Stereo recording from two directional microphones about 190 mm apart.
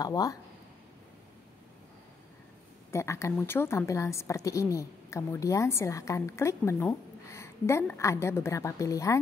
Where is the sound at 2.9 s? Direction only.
15° left (ahead or behind).